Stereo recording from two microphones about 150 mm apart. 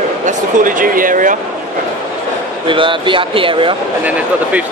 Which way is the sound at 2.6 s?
35° right (ahead or behind).